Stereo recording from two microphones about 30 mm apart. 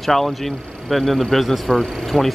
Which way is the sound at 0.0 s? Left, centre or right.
Centre.